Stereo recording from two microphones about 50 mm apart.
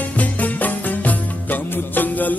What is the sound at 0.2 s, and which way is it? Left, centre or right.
Music, left.